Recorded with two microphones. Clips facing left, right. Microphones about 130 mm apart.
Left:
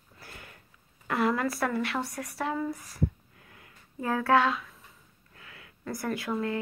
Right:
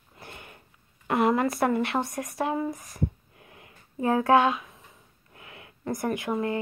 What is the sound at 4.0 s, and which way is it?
A woman's voice, 20° right (ahead or behind).